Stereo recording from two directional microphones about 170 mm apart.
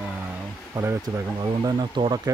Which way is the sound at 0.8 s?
20° right (ahead or behind).